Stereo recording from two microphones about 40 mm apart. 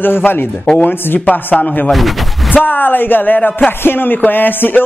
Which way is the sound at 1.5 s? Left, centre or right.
Left.